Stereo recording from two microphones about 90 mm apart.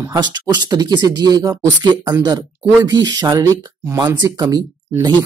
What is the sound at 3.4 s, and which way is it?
Speech, 35° right (ahead or behind).